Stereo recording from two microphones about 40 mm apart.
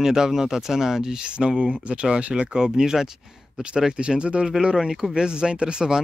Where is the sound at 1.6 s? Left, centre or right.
Right.